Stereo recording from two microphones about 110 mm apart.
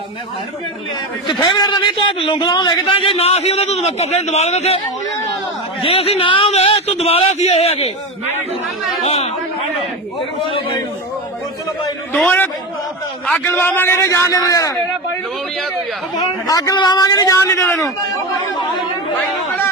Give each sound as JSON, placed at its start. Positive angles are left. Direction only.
{"t": 1.2, "sound": "a man's voice", "side_deg": 45}
{"t": 3.0, "sound": "a man's voice", "side_deg": 65}
{"t": 5.8, "sound": "a woman's voice", "side_deg": 60}
{"t": 6.5, "sound": "a man's voice", "side_deg": 70}
{"t": 9.0, "sound": "a man's voice", "side_deg": 75}
{"t": 13.3, "sound": "a man's voice", "side_deg": 20}
{"t": 16.2, "sound": "a man's voice", "side_deg": 35}